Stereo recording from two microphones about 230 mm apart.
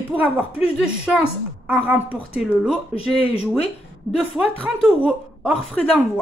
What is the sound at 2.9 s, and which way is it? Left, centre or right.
Speech, left.